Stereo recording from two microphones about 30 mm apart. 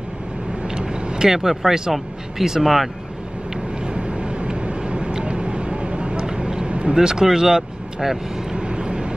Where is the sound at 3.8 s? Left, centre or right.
Right.